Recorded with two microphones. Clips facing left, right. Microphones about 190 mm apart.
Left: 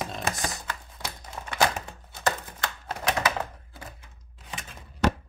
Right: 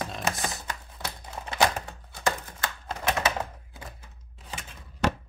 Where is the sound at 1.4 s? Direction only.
15° right (ahead or behind).